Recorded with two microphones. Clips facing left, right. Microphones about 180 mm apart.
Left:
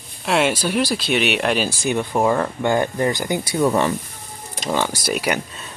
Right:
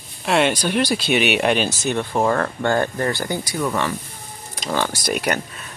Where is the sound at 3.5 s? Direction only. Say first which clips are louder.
Left 6 dB; 30° left (ahead or behind).